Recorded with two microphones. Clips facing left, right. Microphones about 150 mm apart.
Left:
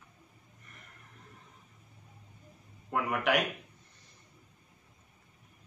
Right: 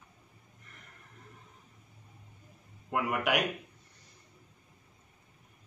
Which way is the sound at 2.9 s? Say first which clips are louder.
Even; 5° right (ahead or behind).